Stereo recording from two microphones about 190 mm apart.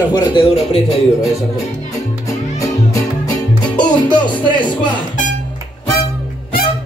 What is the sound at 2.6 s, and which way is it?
Music, 20° left (ahead or behind).